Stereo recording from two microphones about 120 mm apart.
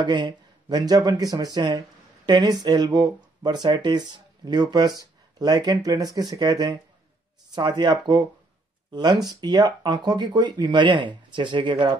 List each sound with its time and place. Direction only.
0.0 s speech: 35° right (ahead or behind)